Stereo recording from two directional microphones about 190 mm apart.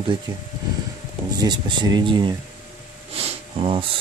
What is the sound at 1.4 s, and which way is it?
Speech, 25° right (ahead or behind).